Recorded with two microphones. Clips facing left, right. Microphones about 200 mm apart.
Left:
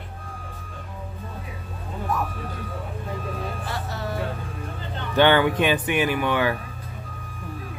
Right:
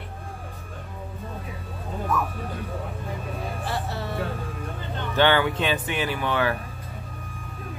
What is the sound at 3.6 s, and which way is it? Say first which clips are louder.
Music: right 2 dB; 30° right (ahead or behind).